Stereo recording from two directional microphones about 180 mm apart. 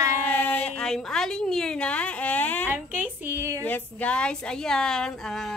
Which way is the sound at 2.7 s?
10° right (ahead or behind).